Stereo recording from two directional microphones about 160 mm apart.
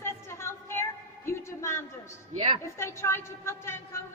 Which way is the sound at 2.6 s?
15° left (ahead or behind).